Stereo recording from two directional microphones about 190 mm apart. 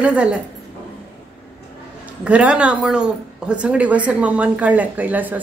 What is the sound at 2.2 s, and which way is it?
Speech, 5° right (ahead or behind).